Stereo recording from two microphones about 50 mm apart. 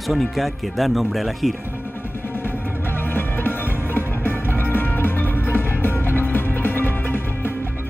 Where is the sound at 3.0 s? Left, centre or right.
Left.